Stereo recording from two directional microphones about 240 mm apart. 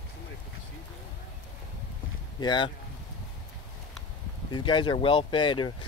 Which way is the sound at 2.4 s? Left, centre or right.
Centre.